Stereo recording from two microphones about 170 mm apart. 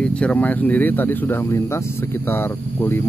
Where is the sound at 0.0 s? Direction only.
5° left (ahead or behind).